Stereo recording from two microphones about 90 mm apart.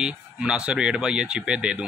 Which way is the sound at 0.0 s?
10° right (ahead or behind).